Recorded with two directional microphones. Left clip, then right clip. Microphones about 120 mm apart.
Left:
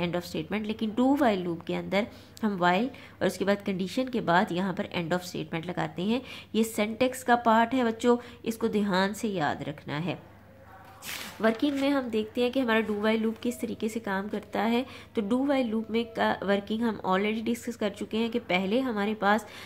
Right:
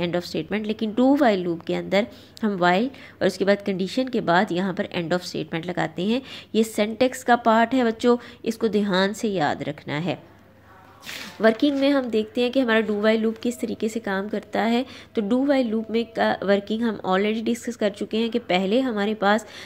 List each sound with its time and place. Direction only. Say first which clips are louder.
0.0 s a woman's voice: right 6 dB; 25° right (ahead or behind)
11.4 s a woman's voice: right 7 dB; 35° right (ahead or behind)